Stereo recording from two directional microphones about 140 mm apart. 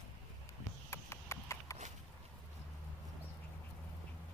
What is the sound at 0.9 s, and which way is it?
Clip-clop, 20° left (ahead or behind).